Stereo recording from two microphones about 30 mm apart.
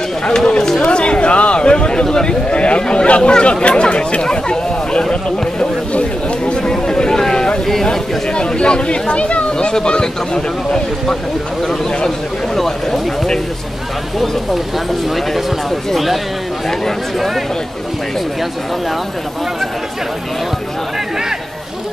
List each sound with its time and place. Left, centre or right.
0.5 s speech: left
0.7 s speech: left
6.6 s a sound: left
7.8 s speech: left
15.9 s speech: centre